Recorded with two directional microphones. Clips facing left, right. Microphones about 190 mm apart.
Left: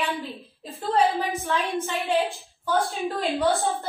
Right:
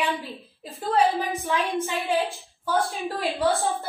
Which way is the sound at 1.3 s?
15° right (ahead or behind).